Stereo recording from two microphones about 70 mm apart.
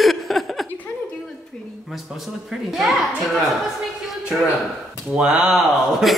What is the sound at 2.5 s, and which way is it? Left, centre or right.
Speech, centre.